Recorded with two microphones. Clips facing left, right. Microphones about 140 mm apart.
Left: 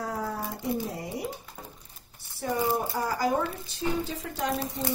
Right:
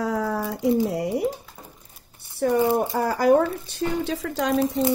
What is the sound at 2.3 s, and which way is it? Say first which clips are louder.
Speech: right 8 dB; 65° right (ahead or behind).